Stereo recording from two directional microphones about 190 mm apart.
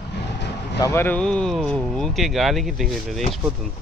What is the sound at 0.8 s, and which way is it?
Speech, 15° left (ahead or behind).